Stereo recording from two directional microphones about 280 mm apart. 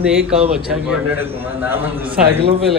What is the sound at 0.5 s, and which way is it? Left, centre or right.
A man's voice, centre.